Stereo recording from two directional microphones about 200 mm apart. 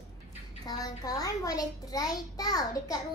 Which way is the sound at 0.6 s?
20° left (ahead or behind).